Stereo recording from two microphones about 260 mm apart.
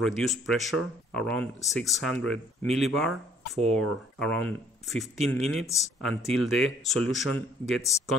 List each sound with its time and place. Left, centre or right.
0.0 s speech: centre